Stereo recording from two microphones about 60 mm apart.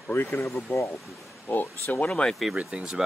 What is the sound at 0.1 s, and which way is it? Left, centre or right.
Speech, left.